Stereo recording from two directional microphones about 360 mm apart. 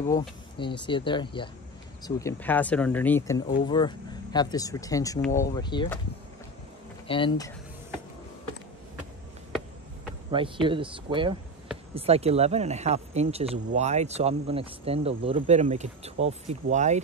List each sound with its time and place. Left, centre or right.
0.1 s speech: centre
7.1 s speech: centre
10.3 s speech: centre